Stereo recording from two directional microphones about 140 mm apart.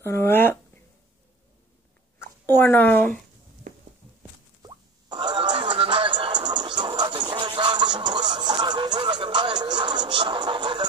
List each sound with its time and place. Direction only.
0.0 s a sound: 20° left (ahead or behind)
2.1 s a woman's voice: 15° left (ahead or behind)
4.6 s music: 30° right (ahead or behind)